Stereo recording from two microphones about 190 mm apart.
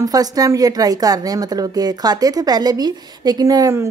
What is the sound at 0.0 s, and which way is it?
A woman's voice, 20° right (ahead or behind).